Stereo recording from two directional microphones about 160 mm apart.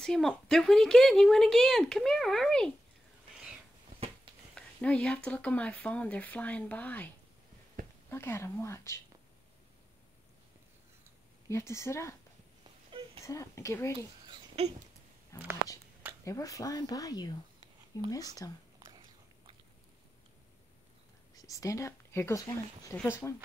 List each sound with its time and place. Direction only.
0.0 s speech: 5° left (ahead or behind)
4.6 s speech: 5° left (ahead or behind)
7.8 s a sound: 60° right (ahead or behind)
8.1 s speech: 15° left (ahead or behind)
11.4 s speech: 15° left (ahead or behind)
13.2 s a woman's voice: 20° left (ahead or behind)
13.9 s speech: 35° right (ahead or behind)
15.3 s a woman's voice: 20° left (ahead or behind)
18.9 s biting: 30° right (ahead or behind)
21.4 s a woman's voice: 20° left (ahead or behind)